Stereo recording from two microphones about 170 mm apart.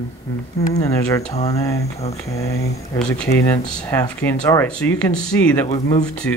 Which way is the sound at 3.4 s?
10° left (ahead or behind).